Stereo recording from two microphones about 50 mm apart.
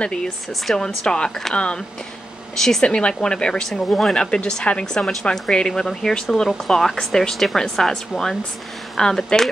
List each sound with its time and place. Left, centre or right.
0.0 s speech: centre
2.5 s speech: centre